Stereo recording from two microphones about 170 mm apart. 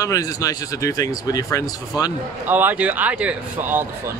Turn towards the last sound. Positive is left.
turn(degrees=-10)  # may be behind; listen again after turning